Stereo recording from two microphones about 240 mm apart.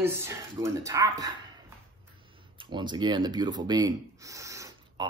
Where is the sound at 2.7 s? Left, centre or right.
Centre.